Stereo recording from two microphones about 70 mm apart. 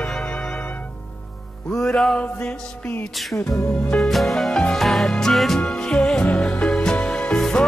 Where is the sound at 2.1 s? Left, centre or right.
Centre.